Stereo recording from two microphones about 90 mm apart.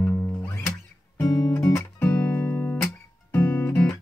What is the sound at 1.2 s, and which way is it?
Music, 45° left (ahead or behind).